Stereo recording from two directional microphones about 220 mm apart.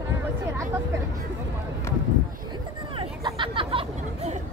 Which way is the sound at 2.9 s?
25° right (ahead or behind).